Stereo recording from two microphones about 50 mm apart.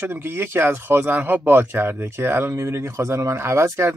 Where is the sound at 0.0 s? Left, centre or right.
Right.